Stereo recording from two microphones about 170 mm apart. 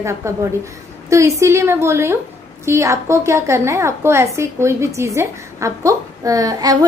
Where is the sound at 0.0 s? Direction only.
15° right (ahead or behind).